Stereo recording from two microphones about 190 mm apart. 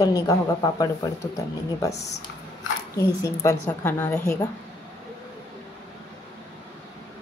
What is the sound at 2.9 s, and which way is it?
A woman's voice, 15° left (ahead or behind).